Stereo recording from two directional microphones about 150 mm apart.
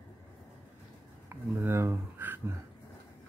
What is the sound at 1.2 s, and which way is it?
Speech, 15° right (ahead or behind).